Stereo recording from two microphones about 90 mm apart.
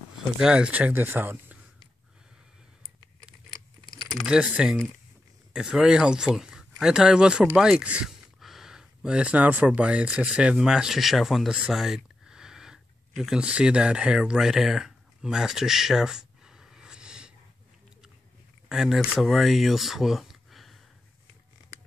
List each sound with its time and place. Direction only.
0.4 s speech: 10° right (ahead or behind)
4.3 s speech: 10° right (ahead or behind)
18.7 s speech: 5° right (ahead or behind)